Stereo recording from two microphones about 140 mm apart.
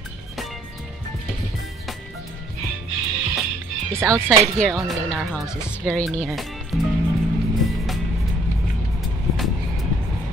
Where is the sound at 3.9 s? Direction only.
20° right (ahead or behind).